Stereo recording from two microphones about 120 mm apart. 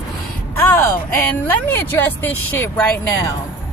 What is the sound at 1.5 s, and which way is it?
Speech, 15° left (ahead or behind).